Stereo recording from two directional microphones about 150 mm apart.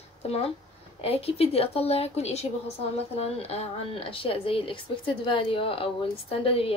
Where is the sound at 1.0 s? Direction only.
40° left (ahead or behind).